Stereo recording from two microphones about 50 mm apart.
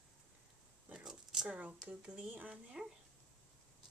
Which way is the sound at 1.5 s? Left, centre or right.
Right.